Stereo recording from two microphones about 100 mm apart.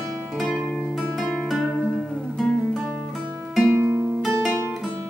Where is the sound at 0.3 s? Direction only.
5° right (ahead or behind).